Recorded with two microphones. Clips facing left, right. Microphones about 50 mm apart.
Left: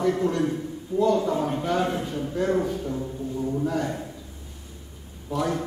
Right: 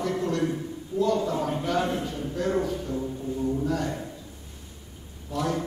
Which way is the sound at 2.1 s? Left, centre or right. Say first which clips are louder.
Left 2 dB; left.